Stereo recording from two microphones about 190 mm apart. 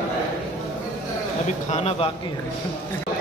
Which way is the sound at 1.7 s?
35° left (ahead or behind).